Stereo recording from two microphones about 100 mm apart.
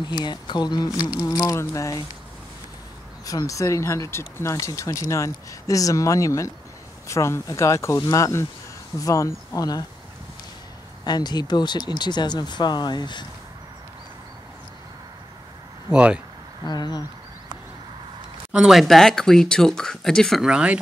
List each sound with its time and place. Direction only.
0.0 s speech: 50° left (ahead or behind)
1.4 s speech: 30° left (ahead or behind)
3.3 s speech: 35° left (ahead or behind)
11.1 s speech: 45° left (ahead or behind)
15.9 s speech: 10° right (ahead or behind)
16.6 s speech: 45° left (ahead or behind)
18.5 s speech: 5° right (ahead or behind)
20.4 s speech: 10° right (ahead or behind)